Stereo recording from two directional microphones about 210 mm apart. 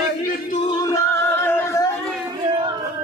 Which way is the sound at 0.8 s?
10° left (ahead or behind).